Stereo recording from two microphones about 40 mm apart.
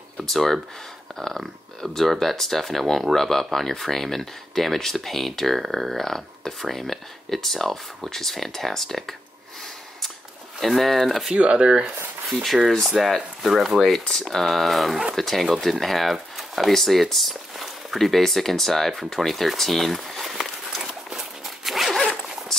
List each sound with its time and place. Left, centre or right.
0.2 s speech: centre
5.9 s speech: centre
10.6 s speech: centre
11.3 s speech: right
12.8 s speech: centre
19.2 s a sound: centre
21.5 s dog: centre